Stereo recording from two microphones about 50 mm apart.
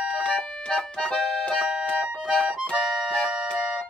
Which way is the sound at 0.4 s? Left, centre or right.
Centre.